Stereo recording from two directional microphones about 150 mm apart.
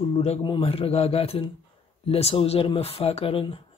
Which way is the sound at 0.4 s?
35° left (ahead or behind).